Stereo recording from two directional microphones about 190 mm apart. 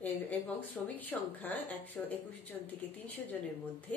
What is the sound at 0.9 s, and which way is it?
A woman's voice, 10° left (ahead or behind).